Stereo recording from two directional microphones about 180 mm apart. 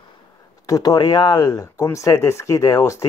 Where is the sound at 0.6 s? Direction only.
20° left (ahead or behind).